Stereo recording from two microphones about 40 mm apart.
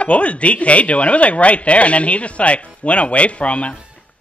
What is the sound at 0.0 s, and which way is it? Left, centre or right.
A woman's voice, left.